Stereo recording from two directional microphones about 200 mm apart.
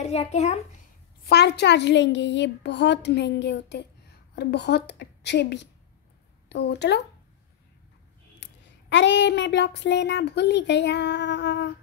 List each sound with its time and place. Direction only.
0.0 s a child's voice: 30° left (ahead or behind)
1.3 s speech: 55° left (ahead or behind)
8.4 s speech: 60° left (ahead or behind)